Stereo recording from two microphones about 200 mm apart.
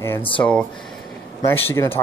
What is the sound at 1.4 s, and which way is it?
Speech, 10° left (ahead or behind).